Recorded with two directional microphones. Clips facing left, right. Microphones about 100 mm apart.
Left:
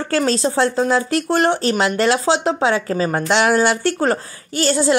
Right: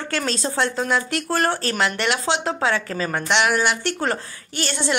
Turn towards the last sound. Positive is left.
turn(degrees=35)  # may be behind; listen again after turning